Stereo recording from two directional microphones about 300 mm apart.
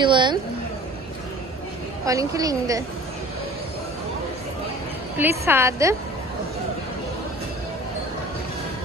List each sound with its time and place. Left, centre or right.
0.0 s a woman's voice: centre
2.0 s a woman's voice: centre
5.4 s a woman's voice: centre